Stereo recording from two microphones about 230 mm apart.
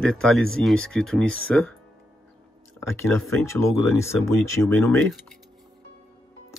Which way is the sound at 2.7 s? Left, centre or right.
Centre.